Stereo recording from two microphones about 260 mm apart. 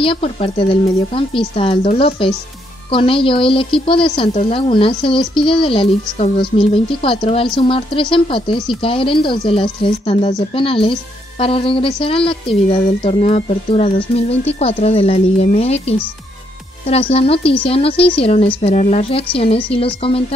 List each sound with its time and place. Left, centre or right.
0.0 s speech: left